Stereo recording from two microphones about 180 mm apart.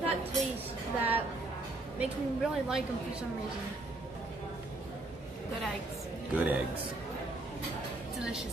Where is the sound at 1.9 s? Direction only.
5° right (ahead or behind).